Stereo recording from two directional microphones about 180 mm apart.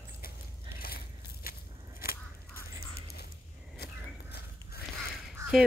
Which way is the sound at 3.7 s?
65° left (ahead or behind).